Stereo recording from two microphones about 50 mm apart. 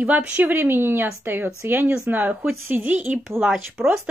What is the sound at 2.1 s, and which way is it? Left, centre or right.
Speech, right.